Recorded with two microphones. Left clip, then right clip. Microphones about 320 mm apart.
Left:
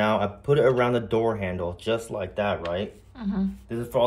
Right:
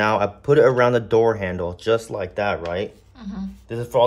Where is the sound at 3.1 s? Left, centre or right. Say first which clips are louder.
Left 4 dB; centre.